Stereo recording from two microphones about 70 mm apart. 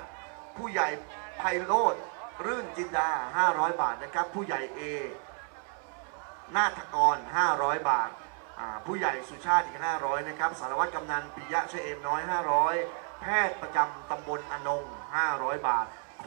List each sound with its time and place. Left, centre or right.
0.7 s a man's voice: centre
6.5 s a man's voice: centre